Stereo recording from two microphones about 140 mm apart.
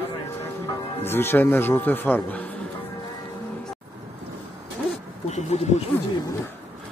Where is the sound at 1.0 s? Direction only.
15° left (ahead or behind).